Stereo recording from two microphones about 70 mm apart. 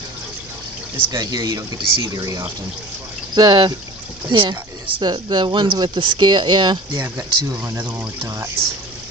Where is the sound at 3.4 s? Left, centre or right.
Right.